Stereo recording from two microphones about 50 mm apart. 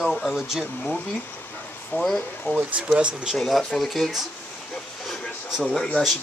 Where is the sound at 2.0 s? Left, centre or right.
Centre.